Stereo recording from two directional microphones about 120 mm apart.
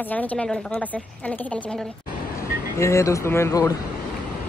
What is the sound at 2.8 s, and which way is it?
Speech, 25° left (ahead or behind).